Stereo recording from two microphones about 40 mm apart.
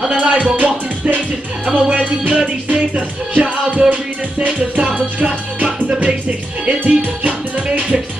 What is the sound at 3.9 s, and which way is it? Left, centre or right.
Music, right.